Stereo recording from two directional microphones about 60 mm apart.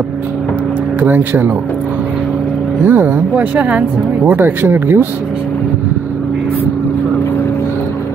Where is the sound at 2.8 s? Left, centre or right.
Right.